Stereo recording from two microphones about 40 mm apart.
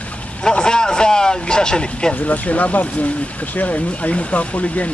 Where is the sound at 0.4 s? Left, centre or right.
Centre.